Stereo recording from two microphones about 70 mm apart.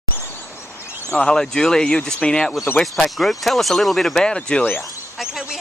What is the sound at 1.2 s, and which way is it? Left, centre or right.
Speech, centre.